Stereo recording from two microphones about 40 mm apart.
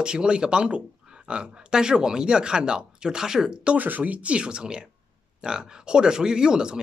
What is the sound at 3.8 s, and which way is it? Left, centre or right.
Speech, right.